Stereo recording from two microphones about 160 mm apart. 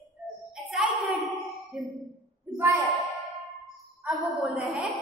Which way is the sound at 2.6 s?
15° right (ahead or behind).